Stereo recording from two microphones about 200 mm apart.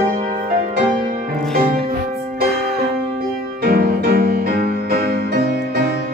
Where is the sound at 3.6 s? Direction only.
50° right (ahead or behind).